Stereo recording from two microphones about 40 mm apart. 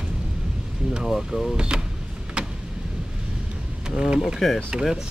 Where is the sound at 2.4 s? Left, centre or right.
Right.